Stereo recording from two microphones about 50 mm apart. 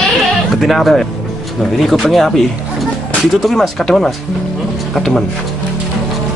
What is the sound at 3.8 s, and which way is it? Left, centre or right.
Speech, centre.